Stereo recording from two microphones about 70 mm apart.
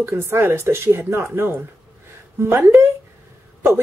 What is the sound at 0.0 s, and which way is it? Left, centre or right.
Speech, right.